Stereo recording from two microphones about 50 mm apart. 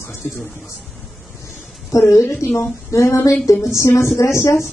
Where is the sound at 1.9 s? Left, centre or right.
Left.